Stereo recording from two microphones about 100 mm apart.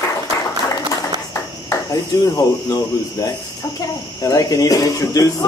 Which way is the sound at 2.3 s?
35° left (ahead or behind).